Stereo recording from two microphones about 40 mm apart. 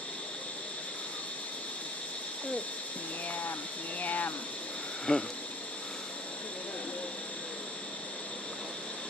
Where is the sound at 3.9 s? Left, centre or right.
Left.